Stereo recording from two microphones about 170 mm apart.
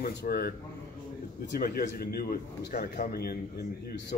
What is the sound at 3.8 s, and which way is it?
Speech, 90° left.